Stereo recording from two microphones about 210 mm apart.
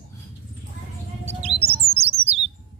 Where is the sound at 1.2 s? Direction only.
30° right (ahead or behind).